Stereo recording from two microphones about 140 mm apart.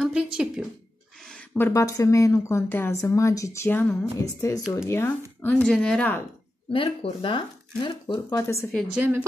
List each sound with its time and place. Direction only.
0.0 s speech: 5° right (ahead or behind)
1.2 s a sound: 5° left (ahead or behind)
1.7 s speech: 25° left (ahead or behind)
5.6 s speech: 5° left (ahead or behind)
6.7 s speech: 40° left (ahead or behind)
8.3 s speech: 20° left (ahead or behind)